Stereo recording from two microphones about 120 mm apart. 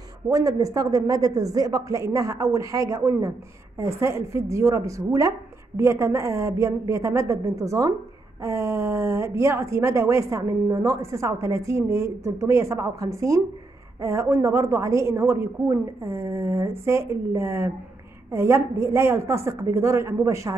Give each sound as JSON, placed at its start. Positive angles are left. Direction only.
{"t": 0.3, "sound": "speech", "side_deg": -30}